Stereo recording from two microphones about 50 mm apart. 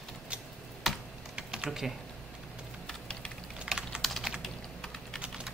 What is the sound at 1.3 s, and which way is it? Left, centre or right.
Typing, centre.